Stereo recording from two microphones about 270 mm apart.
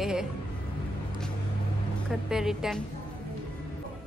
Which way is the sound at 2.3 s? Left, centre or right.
Centre.